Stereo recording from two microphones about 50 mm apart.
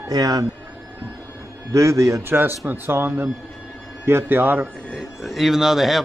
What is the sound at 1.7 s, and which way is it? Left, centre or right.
Speech, right.